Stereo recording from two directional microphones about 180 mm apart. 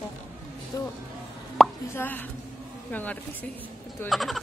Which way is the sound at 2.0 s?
10° left (ahead or behind).